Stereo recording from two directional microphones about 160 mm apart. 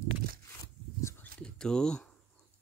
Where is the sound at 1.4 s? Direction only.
5° left (ahead or behind).